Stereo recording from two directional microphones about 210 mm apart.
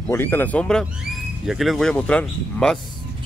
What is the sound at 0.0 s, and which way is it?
Speech, 10° left (ahead or behind).